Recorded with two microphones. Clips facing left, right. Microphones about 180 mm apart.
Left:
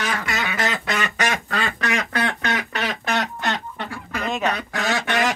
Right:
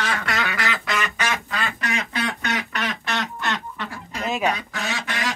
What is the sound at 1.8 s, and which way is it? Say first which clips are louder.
Duck: left 3 dB; 70° left (ahead or behind).